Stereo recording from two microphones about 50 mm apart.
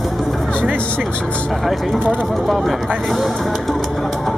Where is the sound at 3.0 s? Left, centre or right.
Centre.